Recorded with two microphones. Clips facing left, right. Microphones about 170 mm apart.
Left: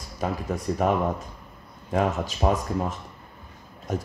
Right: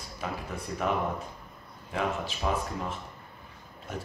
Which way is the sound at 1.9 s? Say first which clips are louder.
Left 6 dB; 45° left (ahead or behind).